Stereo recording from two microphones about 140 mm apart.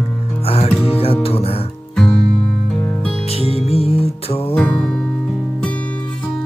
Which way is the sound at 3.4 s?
45° left (ahead or behind).